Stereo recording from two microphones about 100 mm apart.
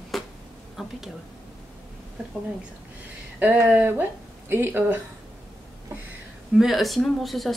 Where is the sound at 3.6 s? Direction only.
20° right (ahead or behind).